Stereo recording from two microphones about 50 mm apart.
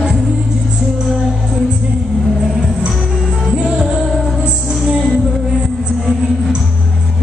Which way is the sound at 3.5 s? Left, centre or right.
Right.